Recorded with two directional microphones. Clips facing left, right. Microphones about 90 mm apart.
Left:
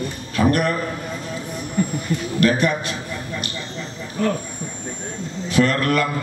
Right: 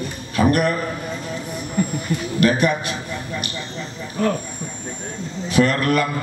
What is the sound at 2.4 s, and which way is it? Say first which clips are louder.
Speech: right 1 dB; 15° right (ahead or behind).